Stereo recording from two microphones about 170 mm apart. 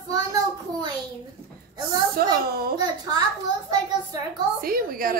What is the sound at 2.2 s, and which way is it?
Speech, 65° right (ahead or behind).